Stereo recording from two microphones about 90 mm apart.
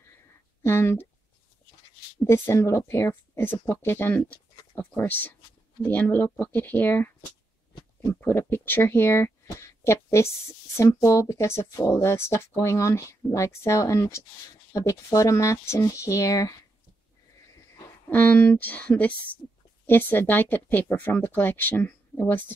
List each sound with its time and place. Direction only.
0.6 s speech: 25° left (ahead or behind)
2.2 s speech: 30° left (ahead or behind)
8.1 s speech: 30° left (ahead or behind)
18.1 s speech: 15° left (ahead or behind)